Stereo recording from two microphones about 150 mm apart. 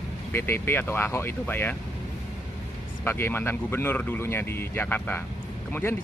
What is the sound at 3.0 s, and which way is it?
Speech, 15° left (ahead or behind).